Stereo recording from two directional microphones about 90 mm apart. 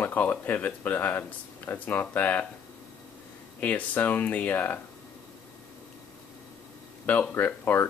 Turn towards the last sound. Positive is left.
turn(degrees=25)  # may be behind; listen again after turning